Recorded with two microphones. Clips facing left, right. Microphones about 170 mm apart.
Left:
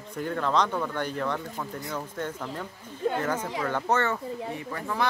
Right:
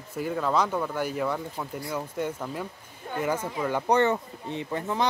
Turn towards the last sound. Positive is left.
turn(degrees=-20)  # may be behind; listen again after turning